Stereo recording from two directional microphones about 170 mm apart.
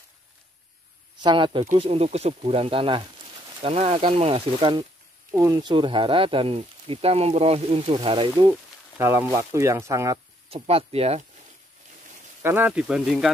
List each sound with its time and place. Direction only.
1.2 s speech: 30° right (ahead or behind)
5.3 s speech: 20° right (ahead or behind)
8.5 s speech: 15° right (ahead or behind)
10.5 s speech: 35° right (ahead or behind)
12.4 s speech: 15° right (ahead or behind)